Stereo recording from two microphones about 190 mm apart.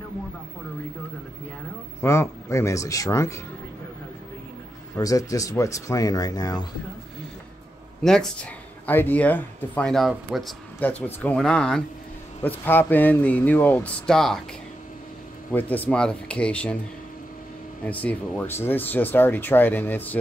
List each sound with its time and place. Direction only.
2.0 s speech: 15° left (ahead or behind)
4.9 s speech: 20° left (ahead or behind)
8.0 s speech: centre (ahead or behind)
15.5 s speech: 10° left (ahead or behind)
17.8 s speech: 10° left (ahead or behind)